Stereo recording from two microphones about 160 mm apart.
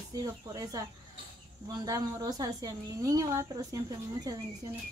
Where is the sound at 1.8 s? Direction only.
25° right (ahead or behind).